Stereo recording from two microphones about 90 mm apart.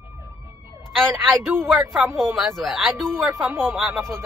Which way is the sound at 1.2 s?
Centre (ahead or behind).